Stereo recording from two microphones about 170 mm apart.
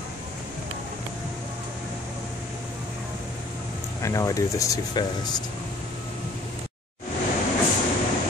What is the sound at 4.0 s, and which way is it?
Speech, 20° left (ahead or behind).